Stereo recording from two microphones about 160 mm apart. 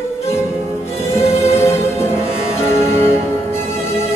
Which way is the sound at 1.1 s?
15° left (ahead or behind).